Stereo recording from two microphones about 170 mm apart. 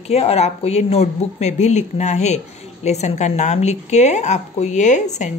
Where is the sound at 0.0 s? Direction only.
35° left (ahead or behind).